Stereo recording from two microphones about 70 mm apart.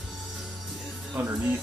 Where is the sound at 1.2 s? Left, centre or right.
Right.